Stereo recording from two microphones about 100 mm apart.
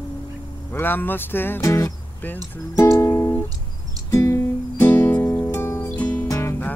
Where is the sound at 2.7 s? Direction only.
30° left (ahead or behind).